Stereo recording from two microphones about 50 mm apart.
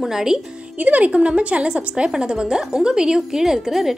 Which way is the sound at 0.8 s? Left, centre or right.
Right.